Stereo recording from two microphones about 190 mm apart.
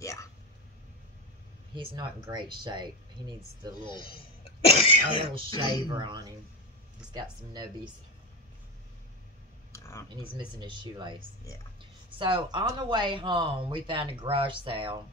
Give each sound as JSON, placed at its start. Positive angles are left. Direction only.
{"t": 0.0, "sound": "a sound", "side_deg": 15}
{"t": 1.9, "sound": "speech", "side_deg": -25}
{"t": 3.8, "sound": "speech", "side_deg": 25}
{"t": 5.9, "sound": "speech", "side_deg": -25}
{"t": 9.7, "sound": "computer keyboard", "side_deg": 15}
{"t": 10.0, "sound": "speech", "side_deg": -25}